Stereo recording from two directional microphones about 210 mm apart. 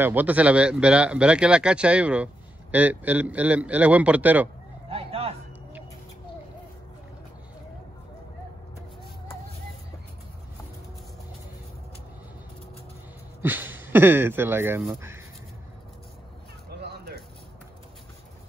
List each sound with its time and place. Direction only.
0.0 s a man's voice: 10° right (ahead or behind)
4.8 s a sound: 30° right (ahead or behind)
13.4 s speech: 10° right (ahead or behind)